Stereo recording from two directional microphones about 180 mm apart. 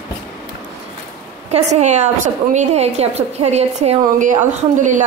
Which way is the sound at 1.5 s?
40° right (ahead or behind).